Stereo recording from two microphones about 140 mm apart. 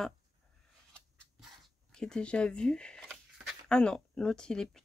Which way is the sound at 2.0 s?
5° left (ahead or behind).